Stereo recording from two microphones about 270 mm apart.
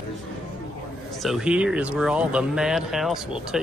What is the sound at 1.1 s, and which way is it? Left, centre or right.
Speech, centre.